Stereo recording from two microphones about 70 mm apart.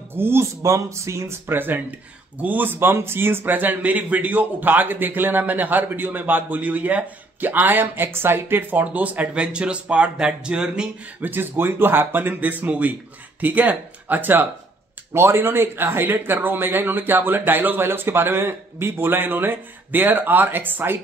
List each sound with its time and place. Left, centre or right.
0.1 s speech: right
1.6 s speech: right
11.1 s speech: right
15.1 s speech: right